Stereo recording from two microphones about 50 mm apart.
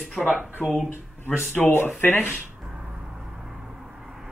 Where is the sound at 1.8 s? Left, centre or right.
Left.